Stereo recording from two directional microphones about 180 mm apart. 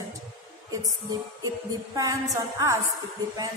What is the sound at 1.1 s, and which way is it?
Music, 20° right (ahead or behind).